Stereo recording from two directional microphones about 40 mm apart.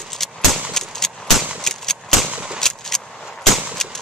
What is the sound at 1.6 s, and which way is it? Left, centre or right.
Gunshot, centre.